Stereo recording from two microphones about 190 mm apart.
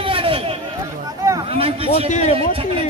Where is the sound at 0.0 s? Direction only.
25° right (ahead or behind).